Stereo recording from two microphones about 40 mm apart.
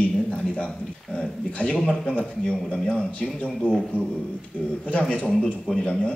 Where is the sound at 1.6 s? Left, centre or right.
Left.